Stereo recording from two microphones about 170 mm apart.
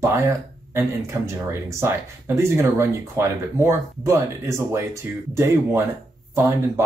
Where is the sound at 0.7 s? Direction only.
15° right (ahead or behind).